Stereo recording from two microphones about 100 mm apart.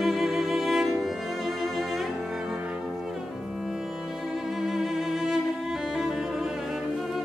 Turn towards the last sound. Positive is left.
turn(degrees=0)  # may be behind; listen again after turning